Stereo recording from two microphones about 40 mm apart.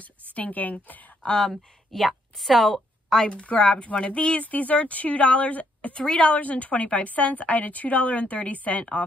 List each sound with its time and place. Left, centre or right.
0.3 s a woman's voice: left
1.4 s a woman's voice: centre
3.3 s speech: left
5.9 s speech: left
6.3 s speech: left